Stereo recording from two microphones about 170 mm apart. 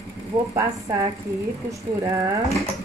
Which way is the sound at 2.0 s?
20° right (ahead or behind).